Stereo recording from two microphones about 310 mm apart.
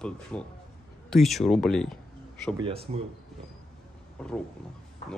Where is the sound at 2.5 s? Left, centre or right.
Centre.